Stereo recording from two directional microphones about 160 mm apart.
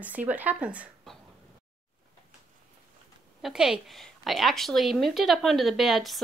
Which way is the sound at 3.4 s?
Centre (ahead or behind).